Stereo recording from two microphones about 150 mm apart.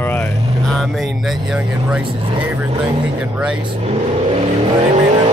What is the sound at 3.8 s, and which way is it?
Vehicle, 45° right (ahead or behind).